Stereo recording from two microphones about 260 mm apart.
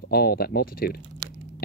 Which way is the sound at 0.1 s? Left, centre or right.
Left.